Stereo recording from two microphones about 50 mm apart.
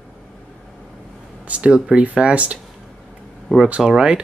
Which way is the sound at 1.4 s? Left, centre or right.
Right.